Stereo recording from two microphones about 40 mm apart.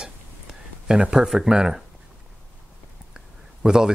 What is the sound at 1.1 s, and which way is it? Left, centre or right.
Speech, centre.